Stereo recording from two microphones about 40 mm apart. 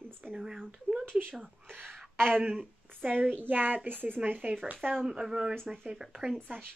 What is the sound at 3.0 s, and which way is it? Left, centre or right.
A woman's voice, right.